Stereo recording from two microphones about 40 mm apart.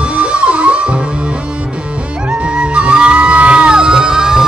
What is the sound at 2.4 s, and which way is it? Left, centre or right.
Music, right.